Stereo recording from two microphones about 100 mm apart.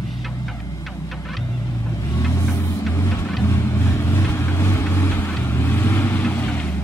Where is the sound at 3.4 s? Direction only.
30° left (ahead or behind); by 6.8 s 15° left (ahead or behind).